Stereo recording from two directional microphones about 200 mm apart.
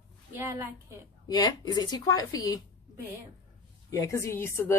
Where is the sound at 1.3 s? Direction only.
20° left (ahead or behind).